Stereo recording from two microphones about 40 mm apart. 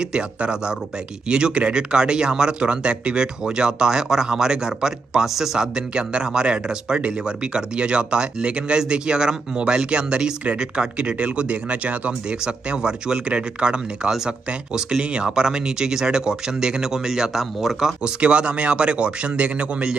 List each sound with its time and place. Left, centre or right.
0.0 s speech: right
5.3 s speech: centre
5.6 s speech: centre; by 12.2 s right
12.3 s speech: right
18.2 s speech: right